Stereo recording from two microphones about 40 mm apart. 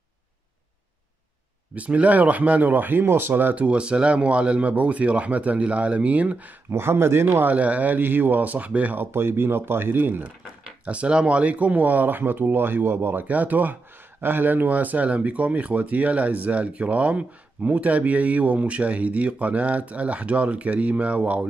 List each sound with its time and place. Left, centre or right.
1.8 s speech: right
3.5 s speech: right
6.8 s speech: right
7.4 s speech: right
8.0 s speech: right
8.9 s speech: right
9.9 s speech: right
10.9 s speech: right
13.1 s speech: right